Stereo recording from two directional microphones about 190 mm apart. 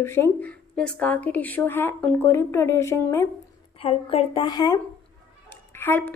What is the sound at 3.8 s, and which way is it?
Speech, 30° left (ahead or behind).